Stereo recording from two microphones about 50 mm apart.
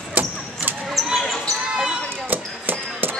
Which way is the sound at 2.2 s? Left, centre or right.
Right.